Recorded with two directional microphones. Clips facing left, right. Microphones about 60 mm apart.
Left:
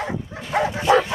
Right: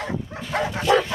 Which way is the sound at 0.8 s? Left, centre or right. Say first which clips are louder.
Left 2 dB; centre.